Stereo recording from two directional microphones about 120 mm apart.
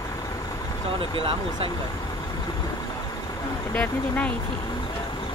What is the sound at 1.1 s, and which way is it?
Speech, 50° right (ahead or behind).